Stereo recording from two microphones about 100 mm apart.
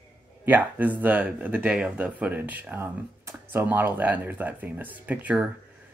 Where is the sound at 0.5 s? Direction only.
15° right (ahead or behind).